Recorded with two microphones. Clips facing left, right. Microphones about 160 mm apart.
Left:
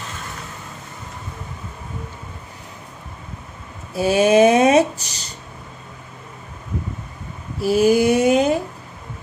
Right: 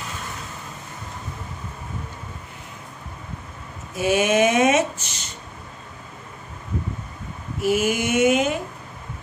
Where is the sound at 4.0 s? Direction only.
35° left (ahead or behind).